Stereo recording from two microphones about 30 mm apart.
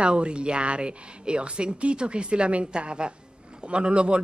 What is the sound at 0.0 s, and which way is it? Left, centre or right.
A woman's voice, right.